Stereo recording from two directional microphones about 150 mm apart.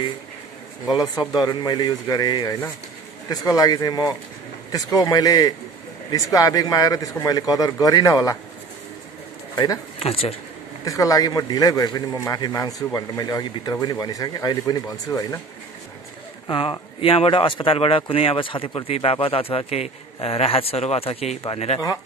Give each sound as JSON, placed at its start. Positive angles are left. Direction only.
{"t": 1.3, "sound": "a man's voice", "side_deg": 30}
{"t": 9.9, "sound": "speech", "side_deg": 40}
{"t": 10.9, "sound": "a man's voice", "side_deg": 20}
{"t": 16.4, "sound": "speech", "side_deg": 35}